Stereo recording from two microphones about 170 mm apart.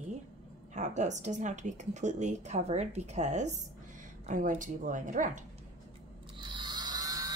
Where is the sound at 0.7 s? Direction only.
45° right (ahead or behind).